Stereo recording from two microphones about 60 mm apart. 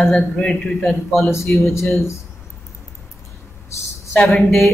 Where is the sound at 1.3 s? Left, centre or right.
Left.